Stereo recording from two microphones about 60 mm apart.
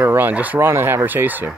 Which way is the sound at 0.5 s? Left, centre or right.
Right.